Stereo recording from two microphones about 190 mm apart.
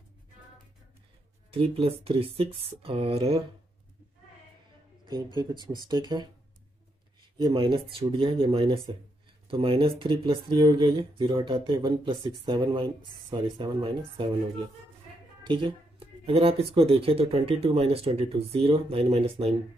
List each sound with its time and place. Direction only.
1.5 s speech: 30° right (ahead or behind)
5.1 s speech: 25° right (ahead or behind)
7.3 s speech: 25° right (ahead or behind)
15.4 s speech: 25° right (ahead or behind)